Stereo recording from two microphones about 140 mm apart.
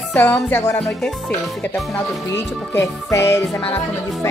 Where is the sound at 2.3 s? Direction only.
15° left (ahead or behind).